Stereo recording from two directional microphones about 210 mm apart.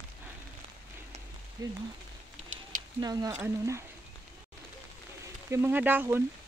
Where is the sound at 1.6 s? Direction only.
20° right (ahead or behind).